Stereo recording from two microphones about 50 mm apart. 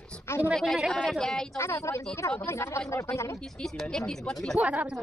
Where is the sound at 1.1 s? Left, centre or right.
Centre.